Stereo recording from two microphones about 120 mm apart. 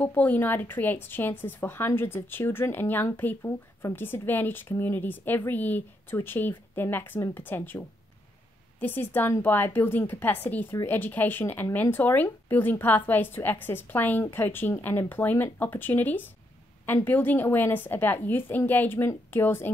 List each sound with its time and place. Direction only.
0.0 s a woman's voice: 15° left (ahead or behind)